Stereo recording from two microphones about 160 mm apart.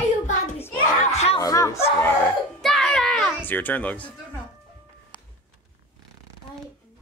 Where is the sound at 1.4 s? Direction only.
20° left (ahead or behind).